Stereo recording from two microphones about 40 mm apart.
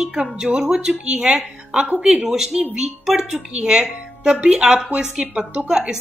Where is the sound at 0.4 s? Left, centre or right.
Centre.